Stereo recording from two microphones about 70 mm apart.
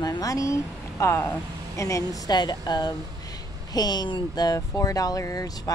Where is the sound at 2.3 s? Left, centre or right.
Left.